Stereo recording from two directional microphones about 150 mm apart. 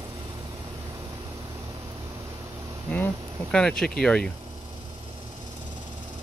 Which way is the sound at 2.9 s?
10° left (ahead or behind).